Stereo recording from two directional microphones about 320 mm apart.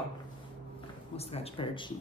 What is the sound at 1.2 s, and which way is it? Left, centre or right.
Speech, centre.